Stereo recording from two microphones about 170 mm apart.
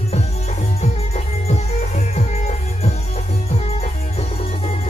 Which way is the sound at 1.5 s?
40° left (ahead or behind).